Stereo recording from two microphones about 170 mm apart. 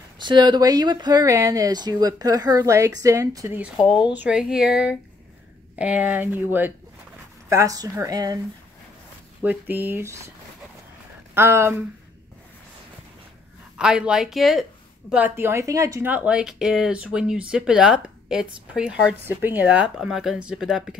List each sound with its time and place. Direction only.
0.2 s speech: 25° right (ahead or behind)
9.4 s speech: 10° right (ahead or behind)
11.3 s speech: 15° right (ahead or behind)
13.7 s speech: 5° right (ahead or behind)